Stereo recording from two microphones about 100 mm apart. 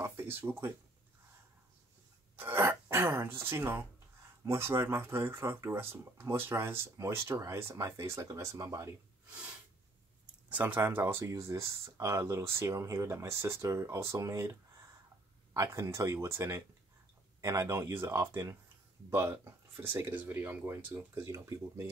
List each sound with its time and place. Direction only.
0.0 s speech: 25° right (ahead or behind)
2.3 s speech: 20° right (ahead or behind)
10.5 s speech: 15° right (ahead or behind)